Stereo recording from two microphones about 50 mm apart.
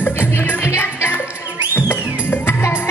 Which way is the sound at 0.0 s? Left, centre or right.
Left.